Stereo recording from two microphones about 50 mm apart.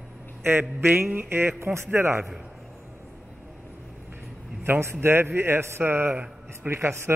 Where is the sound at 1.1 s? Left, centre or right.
Right.